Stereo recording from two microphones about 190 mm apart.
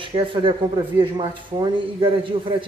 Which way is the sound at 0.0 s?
25° right (ahead or behind).